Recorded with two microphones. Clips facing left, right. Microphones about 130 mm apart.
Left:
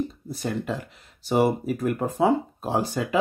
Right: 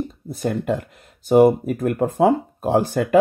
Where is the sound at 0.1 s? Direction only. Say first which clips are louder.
Right 5 dB; 50° right (ahead or behind).